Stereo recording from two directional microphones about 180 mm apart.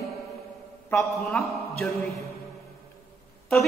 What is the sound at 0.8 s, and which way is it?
A man's voice, centre (ahead or behind).